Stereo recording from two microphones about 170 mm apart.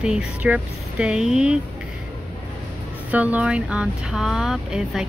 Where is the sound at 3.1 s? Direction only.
10° right (ahead or behind).